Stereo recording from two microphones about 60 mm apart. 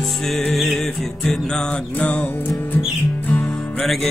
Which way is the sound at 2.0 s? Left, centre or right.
Left.